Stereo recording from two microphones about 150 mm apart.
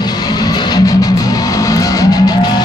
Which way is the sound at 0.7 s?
25° left (ahead or behind).